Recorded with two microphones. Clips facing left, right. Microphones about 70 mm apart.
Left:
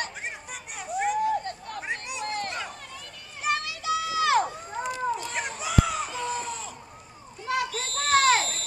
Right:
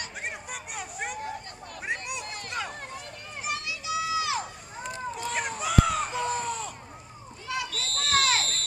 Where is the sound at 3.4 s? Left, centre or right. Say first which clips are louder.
Left 5 dB; left.